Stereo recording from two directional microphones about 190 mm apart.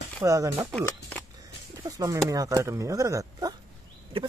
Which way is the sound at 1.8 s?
15° right (ahead or behind).